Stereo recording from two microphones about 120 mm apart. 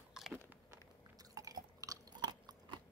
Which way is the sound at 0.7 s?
30° right (ahead or behind).